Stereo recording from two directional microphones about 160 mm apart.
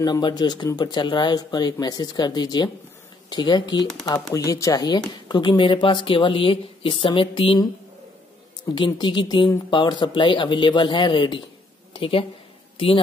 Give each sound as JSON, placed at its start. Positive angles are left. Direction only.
{"t": 0.0, "sound": "speech", "side_deg": 25}
{"t": 8.7, "sound": "a woman's voice", "side_deg": 30}